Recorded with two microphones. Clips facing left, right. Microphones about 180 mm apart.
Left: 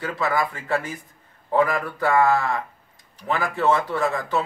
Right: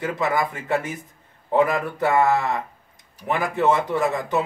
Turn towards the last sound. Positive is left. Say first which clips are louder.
# right 1 dB
turn(degrees=-20)  # may be behind; listen again after turning